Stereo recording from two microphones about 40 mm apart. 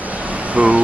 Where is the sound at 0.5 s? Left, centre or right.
Right.